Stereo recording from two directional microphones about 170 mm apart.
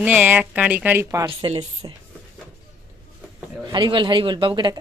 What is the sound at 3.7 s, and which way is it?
Speech, 30° right (ahead or behind).